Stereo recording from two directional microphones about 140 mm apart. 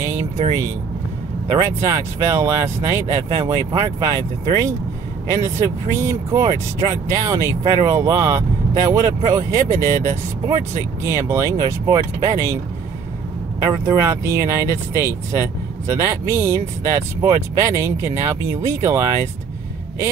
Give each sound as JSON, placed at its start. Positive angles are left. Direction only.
{"t": 1.5, "sound": "speech", "side_deg": -20}
{"t": 13.6, "sound": "speech", "side_deg": -20}